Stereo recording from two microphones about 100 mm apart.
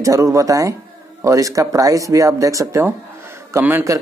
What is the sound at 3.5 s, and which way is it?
Speech, 20° right (ahead or behind).